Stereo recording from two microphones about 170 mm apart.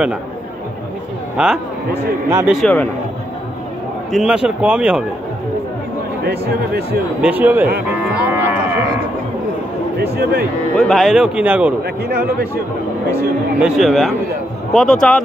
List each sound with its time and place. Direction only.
1.3 s speech: 5° right (ahead or behind)
2.5 s speech: 5° left (ahead or behind)
4.1 s speech: 5° right (ahead or behind)
6.2 s speech: 65° right (ahead or behind)
7.2 s speech: 10° right (ahead or behind)
9.9 s speech: 70° right (ahead or behind)
10.7 s speech: 5° left (ahead or behind)
12.1 s speech: 65° right (ahead or behind)
13.6 s speech: 5° right (ahead or behind)